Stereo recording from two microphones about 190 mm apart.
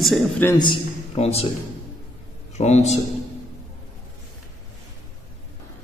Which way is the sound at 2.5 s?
35° left (ahead or behind).